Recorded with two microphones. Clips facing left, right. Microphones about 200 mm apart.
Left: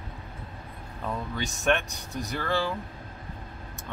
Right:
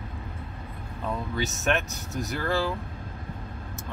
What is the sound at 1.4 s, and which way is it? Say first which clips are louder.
Speech: left 1 dB; 5° right (ahead or behind).